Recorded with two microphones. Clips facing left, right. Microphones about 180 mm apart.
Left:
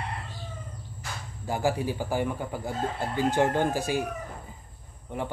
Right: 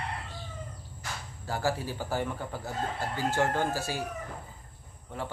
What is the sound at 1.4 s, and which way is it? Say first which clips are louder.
Speech: left 4 dB; 15° left (ahead or behind).